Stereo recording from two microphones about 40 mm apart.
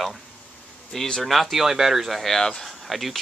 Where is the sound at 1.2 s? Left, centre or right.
Centre.